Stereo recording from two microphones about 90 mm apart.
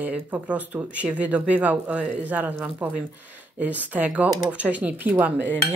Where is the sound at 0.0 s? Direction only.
15° right (ahead or behind).